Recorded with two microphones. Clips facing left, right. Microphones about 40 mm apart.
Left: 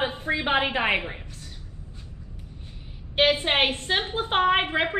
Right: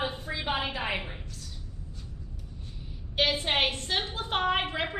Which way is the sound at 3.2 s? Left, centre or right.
Left.